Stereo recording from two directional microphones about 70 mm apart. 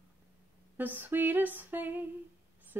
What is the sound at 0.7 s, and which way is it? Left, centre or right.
Humming, right.